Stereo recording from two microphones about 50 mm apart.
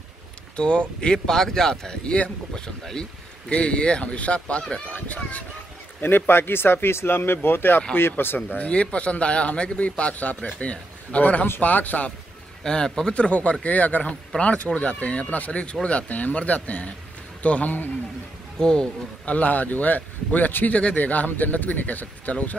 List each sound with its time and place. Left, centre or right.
0.6 s a man's voice: left
5.9 s speech: left
8.4 s a man's voice: left
12.6 s a man's voice: centre; by 17.8 s left
18.6 s speech: centre
19.2 s speech: left